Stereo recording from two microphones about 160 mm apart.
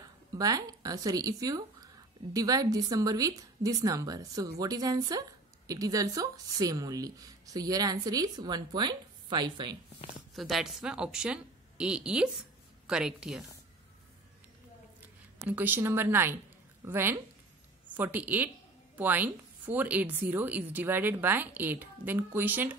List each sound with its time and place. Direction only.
0.3 s speech: 20° right (ahead or behind)
10.3 s a woman's voice: centre (ahead or behind)
15.0 s a woman's voice: 10° right (ahead or behind)